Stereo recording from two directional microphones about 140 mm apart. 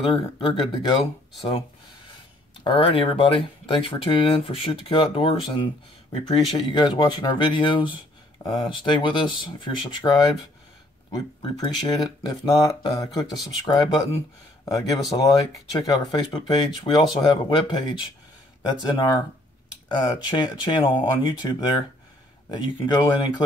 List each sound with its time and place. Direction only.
0.1 s speech: 35° left (ahead or behind)
2.6 s speech: 35° left (ahead or behind)